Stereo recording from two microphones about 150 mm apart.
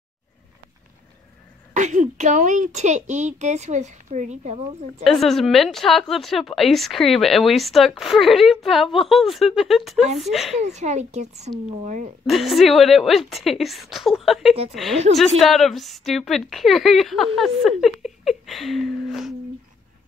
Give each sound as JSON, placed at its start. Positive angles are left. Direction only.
{"t": 1.7, "sound": "a woman's voice", "side_deg": -55}
{"t": 5.0, "sound": "a woman's voice", "side_deg": 0}
{"t": 10.6, "sound": "a woman's voice", "side_deg": -50}
{"t": 12.3, "sound": "a woman's voice", "side_deg": 0}